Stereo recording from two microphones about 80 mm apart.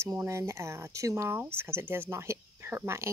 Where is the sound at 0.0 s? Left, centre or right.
Right.